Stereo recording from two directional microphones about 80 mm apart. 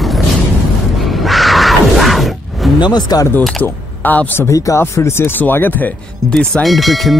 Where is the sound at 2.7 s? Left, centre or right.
Left.